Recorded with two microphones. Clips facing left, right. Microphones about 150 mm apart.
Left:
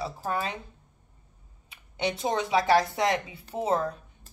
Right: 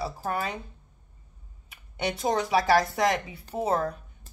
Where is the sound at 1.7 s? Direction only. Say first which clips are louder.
Left 1 dB; 25° left (ahead or behind).